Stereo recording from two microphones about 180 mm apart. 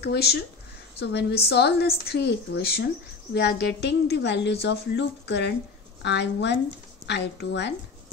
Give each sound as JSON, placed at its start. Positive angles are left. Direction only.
{"t": 0.0, "sound": "a woman's voice", "side_deg": 65}